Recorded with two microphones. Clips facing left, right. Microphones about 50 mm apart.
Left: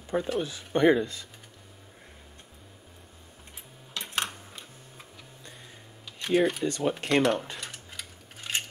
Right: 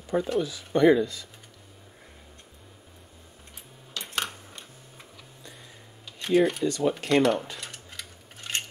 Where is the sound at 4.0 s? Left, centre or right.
Centre.